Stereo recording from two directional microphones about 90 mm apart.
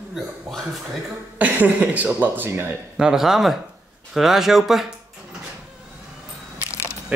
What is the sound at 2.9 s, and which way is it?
A man's voice, 5° right (ahead or behind).